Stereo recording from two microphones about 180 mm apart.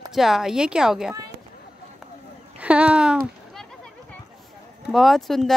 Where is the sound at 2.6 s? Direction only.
5° right (ahead or behind).